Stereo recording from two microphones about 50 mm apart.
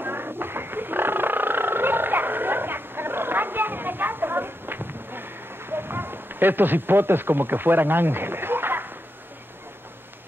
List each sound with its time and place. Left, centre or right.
0.0 s fowl: right